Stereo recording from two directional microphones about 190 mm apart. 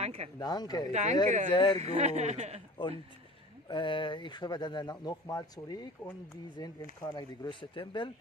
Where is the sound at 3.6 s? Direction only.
25° left (ahead or behind).